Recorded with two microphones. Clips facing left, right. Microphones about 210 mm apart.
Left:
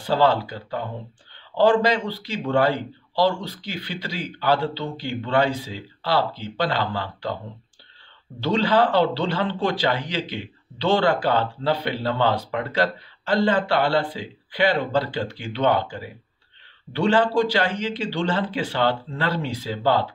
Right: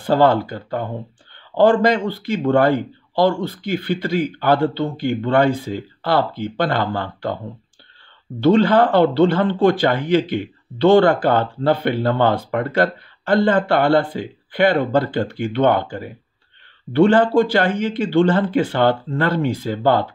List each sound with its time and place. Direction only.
0.0 s speech: 50° right (ahead or behind)
8.4 s speech: 50° right (ahead or behind)